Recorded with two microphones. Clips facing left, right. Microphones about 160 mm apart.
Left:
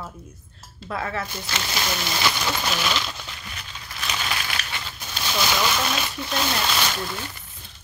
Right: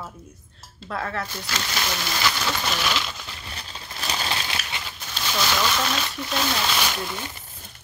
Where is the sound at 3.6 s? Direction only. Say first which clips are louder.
Right 2 dB; 30° right (ahead or behind).